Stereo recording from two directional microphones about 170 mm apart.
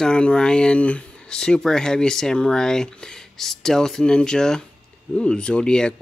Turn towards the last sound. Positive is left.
turn(degrees=5)  # may be behind; listen again after turning